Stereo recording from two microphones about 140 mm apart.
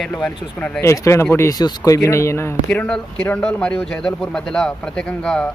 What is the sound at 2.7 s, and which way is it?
Speech, 5° left (ahead or behind).